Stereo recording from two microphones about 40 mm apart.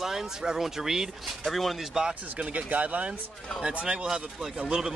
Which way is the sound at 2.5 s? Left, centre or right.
Right.